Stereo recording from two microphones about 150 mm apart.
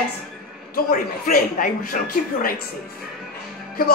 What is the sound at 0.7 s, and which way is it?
A child's voice, 70° left (ahead or behind).